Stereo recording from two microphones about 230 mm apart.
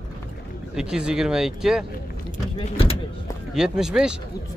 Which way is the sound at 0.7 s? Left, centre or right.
Centre.